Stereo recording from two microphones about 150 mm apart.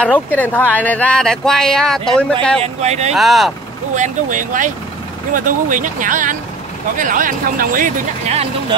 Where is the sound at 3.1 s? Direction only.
Centre (ahead or behind).